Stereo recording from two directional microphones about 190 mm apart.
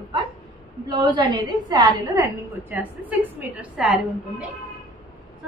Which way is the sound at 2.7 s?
10° right (ahead or behind).